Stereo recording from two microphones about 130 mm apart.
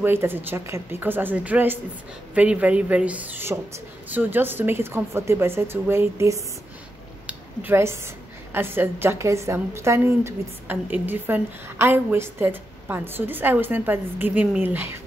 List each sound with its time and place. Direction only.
0.0 s a woman's voice: 15° right (ahead or behind)
7.2 s a sound: 15° right (ahead or behind)
8.5 s a woman's voice: 15° right (ahead or behind)